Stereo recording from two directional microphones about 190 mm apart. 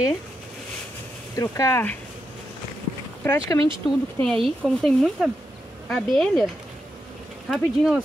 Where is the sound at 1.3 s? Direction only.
15° left (ahead or behind).